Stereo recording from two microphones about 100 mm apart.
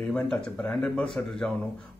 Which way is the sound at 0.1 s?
15° left (ahead or behind).